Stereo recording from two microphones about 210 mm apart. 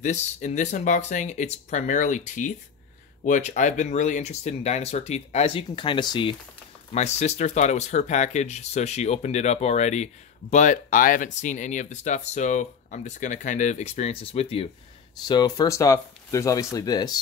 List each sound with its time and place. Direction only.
0.0 s speech: 35° left (ahead or behind); by 17.2 s 20° left (ahead or behind)